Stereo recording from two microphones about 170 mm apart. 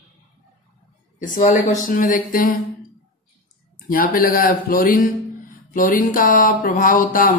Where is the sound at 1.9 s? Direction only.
55° left (ahead or behind).